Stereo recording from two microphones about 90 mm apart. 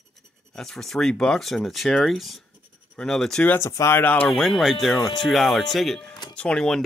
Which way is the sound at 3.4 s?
30° left (ahead or behind).